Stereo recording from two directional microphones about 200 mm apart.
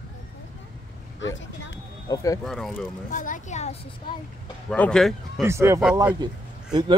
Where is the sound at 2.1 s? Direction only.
15° left (ahead or behind).